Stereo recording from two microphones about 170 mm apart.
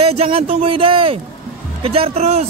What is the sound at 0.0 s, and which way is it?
Speech, 35° right (ahead or behind).